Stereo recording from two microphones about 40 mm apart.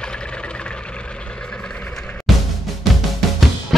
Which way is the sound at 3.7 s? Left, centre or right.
Centre.